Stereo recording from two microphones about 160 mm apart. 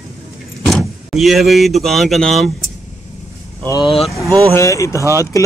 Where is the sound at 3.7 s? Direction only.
35° left (ahead or behind).